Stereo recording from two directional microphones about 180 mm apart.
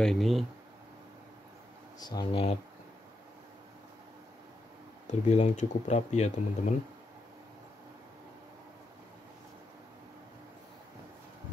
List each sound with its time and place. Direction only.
0.0 s speech: centre (ahead or behind)
2.0 s speech: 25° left (ahead or behind)
5.0 s speech: 40° left (ahead or behind)